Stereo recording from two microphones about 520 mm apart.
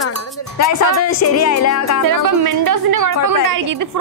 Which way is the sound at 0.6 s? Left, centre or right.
Left.